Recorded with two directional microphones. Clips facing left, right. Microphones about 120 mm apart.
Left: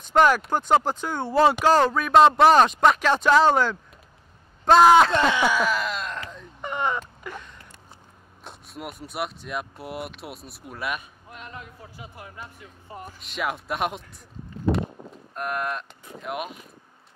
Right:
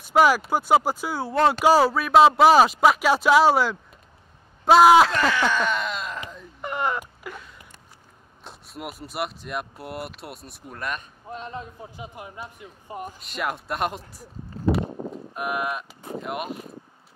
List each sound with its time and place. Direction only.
0.0 s speech: 5° right (ahead or behind)
1.6 s speech: 10° right (ahead or behind)
5.1 s a sound: 20° left (ahead or behind)
5.4 s a sound: 5° left (ahead or behind)
8.5 s speech: centre (ahead or behind)
11.2 s speech: 30° right (ahead or behind)
13.2 s speech: centre (ahead or behind)